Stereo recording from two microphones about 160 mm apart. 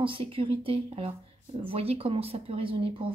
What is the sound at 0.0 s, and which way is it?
A woman's voice, 35° right (ahead or behind).